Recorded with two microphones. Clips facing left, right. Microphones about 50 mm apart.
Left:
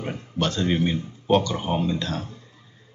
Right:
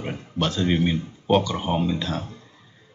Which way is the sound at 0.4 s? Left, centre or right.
Centre.